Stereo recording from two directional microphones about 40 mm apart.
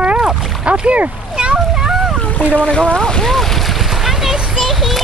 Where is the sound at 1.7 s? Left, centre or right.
Centre.